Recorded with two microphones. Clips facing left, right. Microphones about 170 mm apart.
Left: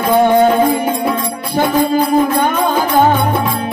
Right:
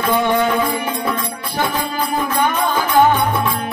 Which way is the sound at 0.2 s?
50° left (ahead or behind).